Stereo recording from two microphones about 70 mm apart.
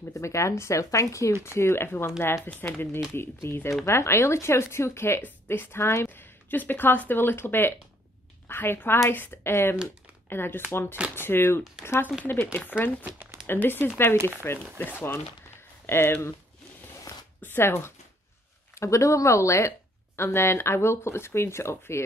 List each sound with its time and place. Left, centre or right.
0.1 s a woman's voice: left
17.4 s speech: left
18.8 s a woman's voice: left